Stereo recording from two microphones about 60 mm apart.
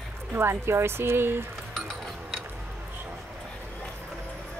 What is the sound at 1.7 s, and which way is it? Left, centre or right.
Music, centre.